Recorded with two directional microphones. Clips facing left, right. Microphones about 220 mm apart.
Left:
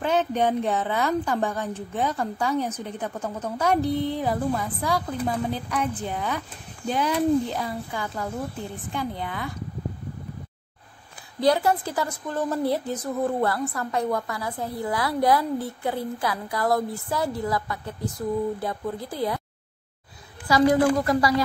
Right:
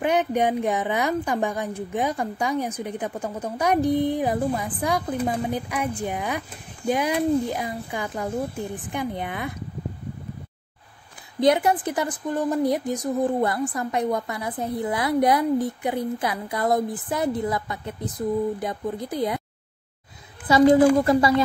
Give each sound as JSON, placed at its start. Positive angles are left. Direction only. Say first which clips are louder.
{"t": 0.0, "sound": "a woman's voice", "louder": "right 1 dB", "side_deg": -15}
{"t": 11.3, "sound": "a woman's voice", "louder": "right 2 dB", "side_deg": -20}
{"t": 20.4, "sound": "a woman's voice", "louder": "right 4 dB", "side_deg": -25}